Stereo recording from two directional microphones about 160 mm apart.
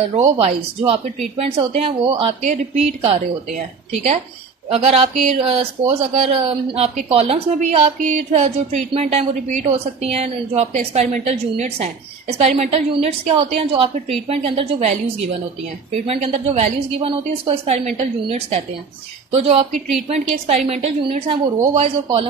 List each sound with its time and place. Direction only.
0.1 s speech: 40° right (ahead or behind)
2.4 s a woman's voice: 45° right (ahead or behind)
4.6 s speech: 40° right (ahead or behind)
19.3 s speech: 40° right (ahead or behind)